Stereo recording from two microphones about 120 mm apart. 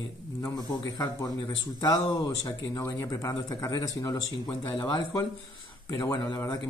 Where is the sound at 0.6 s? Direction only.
30° left (ahead or behind).